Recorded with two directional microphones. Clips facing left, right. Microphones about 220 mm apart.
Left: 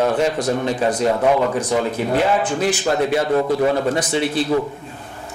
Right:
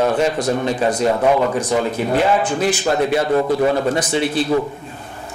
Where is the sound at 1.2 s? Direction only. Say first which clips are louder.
Right 1 dB; 25° right (ahead or behind).